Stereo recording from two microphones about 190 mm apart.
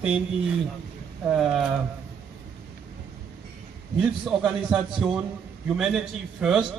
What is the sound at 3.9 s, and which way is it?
A man's voice, centre (ahead or behind).